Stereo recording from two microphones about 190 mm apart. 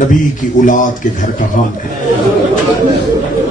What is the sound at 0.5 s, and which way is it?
Speech, 45° left (ahead or behind).